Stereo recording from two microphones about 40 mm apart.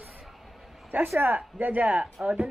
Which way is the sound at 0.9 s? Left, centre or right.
Right.